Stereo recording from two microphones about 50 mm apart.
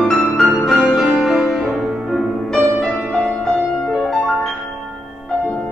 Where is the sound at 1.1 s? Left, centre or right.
Centre.